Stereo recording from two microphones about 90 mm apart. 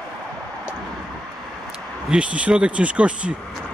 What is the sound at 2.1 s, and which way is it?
Speech, 15° right (ahead or behind).